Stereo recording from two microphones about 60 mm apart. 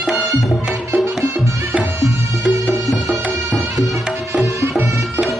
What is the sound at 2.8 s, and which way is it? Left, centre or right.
Music, centre.